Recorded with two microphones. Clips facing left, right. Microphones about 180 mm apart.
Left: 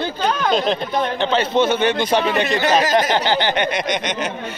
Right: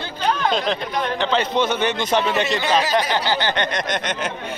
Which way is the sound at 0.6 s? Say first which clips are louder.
Left 3 dB; 25° left (ahead or behind).